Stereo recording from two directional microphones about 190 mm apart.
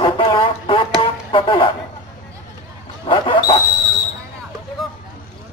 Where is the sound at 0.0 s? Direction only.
25° left (ahead or behind).